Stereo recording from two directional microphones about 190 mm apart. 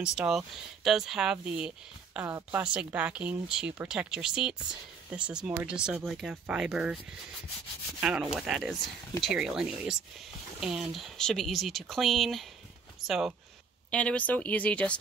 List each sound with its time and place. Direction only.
0.0 s speech: 5° right (ahead or behind)
8.0 s speech: 5° right (ahead or behind)